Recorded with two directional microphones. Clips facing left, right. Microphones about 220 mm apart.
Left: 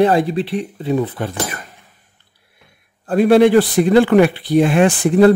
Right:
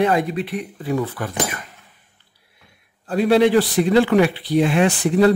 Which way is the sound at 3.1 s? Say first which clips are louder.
Left 4 dB; 50° left (ahead or behind).